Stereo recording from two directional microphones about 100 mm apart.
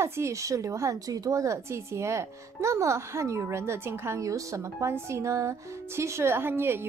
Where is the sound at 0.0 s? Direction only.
30° right (ahead or behind).